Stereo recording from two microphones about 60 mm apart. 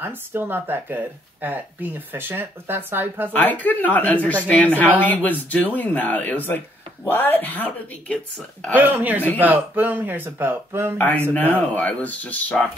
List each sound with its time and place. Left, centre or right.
0.0 s speech: right
3.3 s speech: left
8.7 s speech: right
11.0 s speech: left